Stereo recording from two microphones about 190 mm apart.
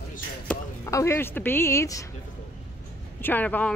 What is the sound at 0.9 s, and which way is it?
A woman's voice, 15° left (ahead or behind).